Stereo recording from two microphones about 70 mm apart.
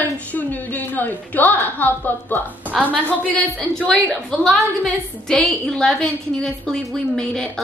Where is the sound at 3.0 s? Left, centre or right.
Left.